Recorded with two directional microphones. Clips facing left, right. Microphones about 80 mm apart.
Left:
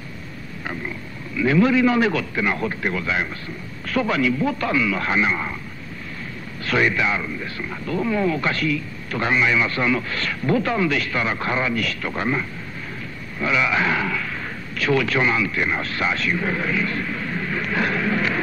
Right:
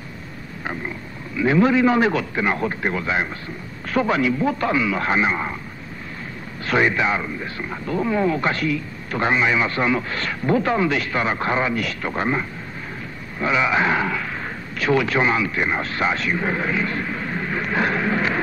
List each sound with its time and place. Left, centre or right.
0.7 s a man's voice: right
6.6 s a man's voice: right